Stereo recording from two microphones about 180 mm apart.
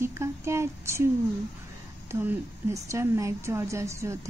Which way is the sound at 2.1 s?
10° right (ahead or behind).